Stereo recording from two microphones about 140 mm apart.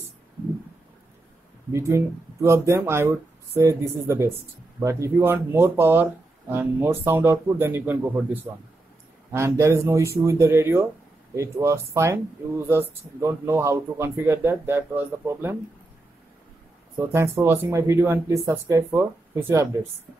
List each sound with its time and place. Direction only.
1.7 s speech: 20° right (ahead or behind)
17.1 s speech: 20° right (ahead or behind)